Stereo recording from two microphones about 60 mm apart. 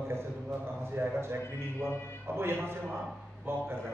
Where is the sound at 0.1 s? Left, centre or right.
Right.